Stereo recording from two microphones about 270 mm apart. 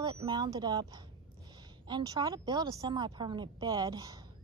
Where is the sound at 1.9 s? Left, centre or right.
Centre.